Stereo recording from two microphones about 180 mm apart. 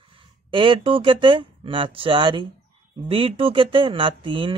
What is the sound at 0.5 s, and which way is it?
Speech, 30° right (ahead or behind).